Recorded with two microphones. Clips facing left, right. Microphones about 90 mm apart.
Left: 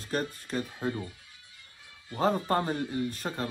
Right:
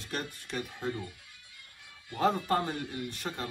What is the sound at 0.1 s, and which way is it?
Speech, 40° left (ahead or behind).